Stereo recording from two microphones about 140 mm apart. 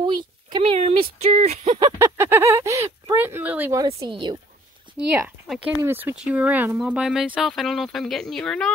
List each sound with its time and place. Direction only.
0.0 s speech: 35° right (ahead or behind); by 1.8 s 50° right (ahead or behind)
2.0 s a sound: 20° right (ahead or behind)
3.7 s speech: 25° right (ahead or behind)
4.9 s speech: 10° right (ahead or behind)